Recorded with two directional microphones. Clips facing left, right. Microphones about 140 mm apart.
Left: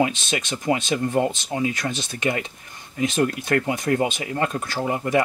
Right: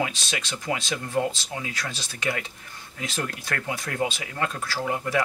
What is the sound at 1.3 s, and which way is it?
Speech, 20° left (ahead or behind).